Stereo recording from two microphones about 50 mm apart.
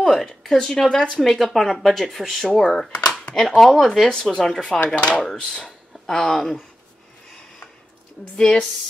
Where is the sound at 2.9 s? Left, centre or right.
Left.